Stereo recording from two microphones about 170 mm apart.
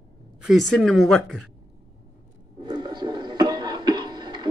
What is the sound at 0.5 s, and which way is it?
Speech, centre (ahead or behind).